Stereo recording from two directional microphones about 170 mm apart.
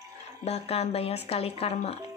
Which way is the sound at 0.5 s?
35° left (ahead or behind).